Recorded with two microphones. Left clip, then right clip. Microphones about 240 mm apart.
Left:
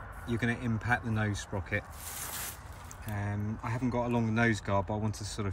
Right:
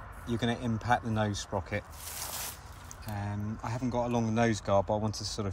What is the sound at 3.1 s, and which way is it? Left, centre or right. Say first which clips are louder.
Speech: even; centre.